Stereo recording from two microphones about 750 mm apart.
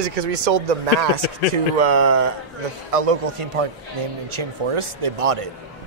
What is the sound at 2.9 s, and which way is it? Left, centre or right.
Speech, right.